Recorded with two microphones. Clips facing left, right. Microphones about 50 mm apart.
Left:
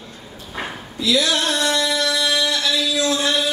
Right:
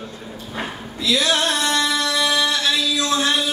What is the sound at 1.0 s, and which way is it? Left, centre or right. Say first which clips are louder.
Music: even; right.